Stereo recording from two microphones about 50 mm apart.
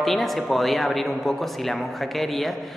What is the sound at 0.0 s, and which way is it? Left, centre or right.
Speech, centre.